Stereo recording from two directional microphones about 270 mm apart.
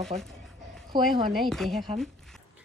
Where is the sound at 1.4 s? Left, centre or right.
Centre.